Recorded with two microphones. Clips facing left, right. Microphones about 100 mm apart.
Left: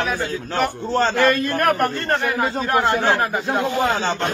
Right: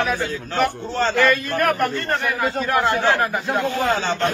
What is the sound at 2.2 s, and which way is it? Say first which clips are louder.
Speech: left 1 dB; 25° left (ahead or behind).